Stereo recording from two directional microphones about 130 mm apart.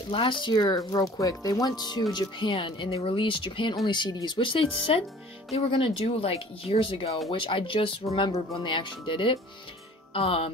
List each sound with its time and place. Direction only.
0.1 s speech: 40° left (ahead or behind)